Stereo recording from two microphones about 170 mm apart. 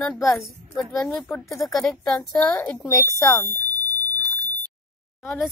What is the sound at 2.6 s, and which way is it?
Speech, 15° left (ahead or behind).